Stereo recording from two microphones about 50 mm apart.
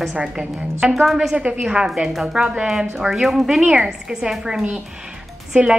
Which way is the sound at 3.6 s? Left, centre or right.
Centre.